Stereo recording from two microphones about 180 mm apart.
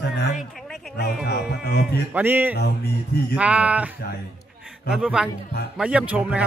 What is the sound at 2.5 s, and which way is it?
Music, 65° left (ahead or behind).